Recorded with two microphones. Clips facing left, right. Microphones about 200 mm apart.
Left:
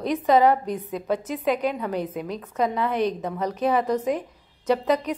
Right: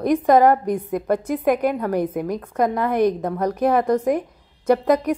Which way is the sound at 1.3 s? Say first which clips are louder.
Right 5 dB; 55° right (ahead or behind).